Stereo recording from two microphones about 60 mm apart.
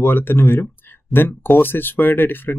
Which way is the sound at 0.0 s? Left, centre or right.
Left.